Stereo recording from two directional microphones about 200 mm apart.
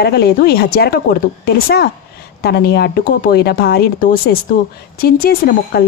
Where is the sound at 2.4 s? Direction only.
50° left (ahead or behind).